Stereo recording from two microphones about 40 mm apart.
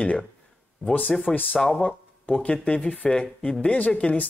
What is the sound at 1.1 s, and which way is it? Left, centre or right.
Speech, centre.